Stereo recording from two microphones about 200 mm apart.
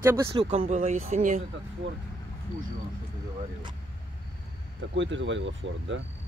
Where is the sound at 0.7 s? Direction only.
40° right (ahead or behind).